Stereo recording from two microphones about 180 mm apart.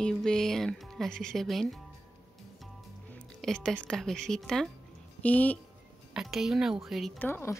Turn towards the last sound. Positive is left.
turn(degrees=15)  # may be behind; listen again after turning